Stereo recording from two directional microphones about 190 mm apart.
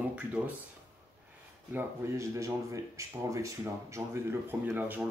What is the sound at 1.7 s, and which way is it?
Speech, 10° right (ahead or behind).